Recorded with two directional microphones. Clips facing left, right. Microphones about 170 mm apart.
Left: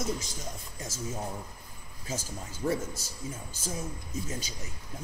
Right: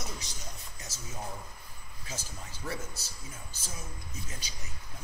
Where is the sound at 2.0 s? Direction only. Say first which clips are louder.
Left 6 dB; 50° left (ahead or behind).